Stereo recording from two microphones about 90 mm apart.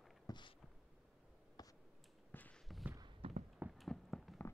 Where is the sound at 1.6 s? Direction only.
50° left (ahead or behind).